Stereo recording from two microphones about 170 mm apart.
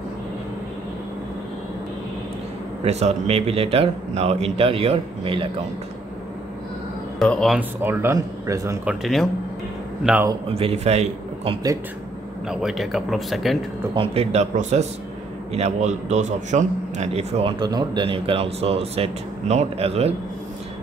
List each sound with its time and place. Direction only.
2.8 s a man's voice: 40° right (ahead or behind)
7.2 s speech: 5° left (ahead or behind)
7.8 s speech: 15° right (ahead or behind)
8.8 s speech: centre (ahead or behind)
10.5 s a man's voice: 35° right (ahead or behind)
12.4 s speech: centre (ahead or behind)
13.9 s a man's voice: 35° right (ahead or behind)